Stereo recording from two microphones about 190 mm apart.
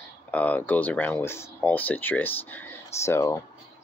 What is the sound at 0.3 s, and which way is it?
Speech, 10° left (ahead or behind).